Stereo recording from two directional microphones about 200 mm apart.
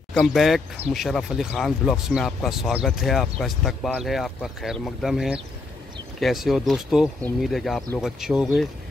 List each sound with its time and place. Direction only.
0.1 s speech: centre (ahead or behind)